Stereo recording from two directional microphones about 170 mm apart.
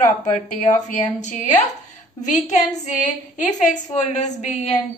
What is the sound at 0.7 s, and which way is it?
Speech, 45° left (ahead or behind).